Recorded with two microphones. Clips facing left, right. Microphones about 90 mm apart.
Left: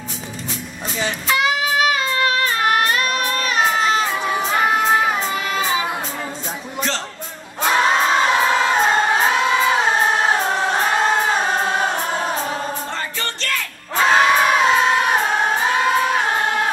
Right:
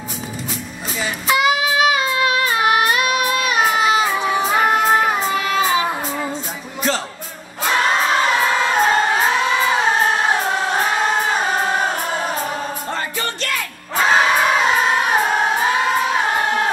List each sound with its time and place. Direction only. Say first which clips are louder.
0.9 s child singing: right 2 dB; 5° right (ahead or behind)
7.6 s singing: left 1 dB; centre (ahead or behind)
13.2 s music: right 1 dB; 10° right (ahead or behind)